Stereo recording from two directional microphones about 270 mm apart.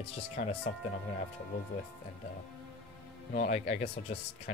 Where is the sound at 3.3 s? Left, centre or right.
Left.